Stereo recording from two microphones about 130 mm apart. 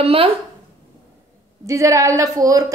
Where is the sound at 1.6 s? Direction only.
25° right (ahead or behind).